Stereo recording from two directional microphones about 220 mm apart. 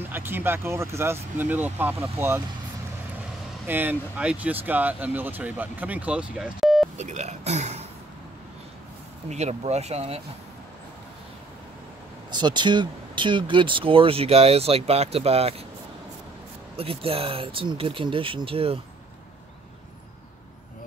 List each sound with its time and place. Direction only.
0.1 s speech: 10° right (ahead or behind)
3.6 s speech: 10° right (ahead or behind)
7.0 s speech: 30° right (ahead or behind)
9.3 s speech: 30° right (ahead or behind)
12.3 s speech: 20° right (ahead or behind)
16.7 s speech: 25° right (ahead or behind)